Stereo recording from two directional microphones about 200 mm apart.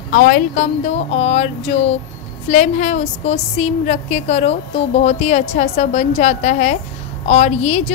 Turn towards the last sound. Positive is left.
turn(degrees=35)  # may be behind; listen again after turning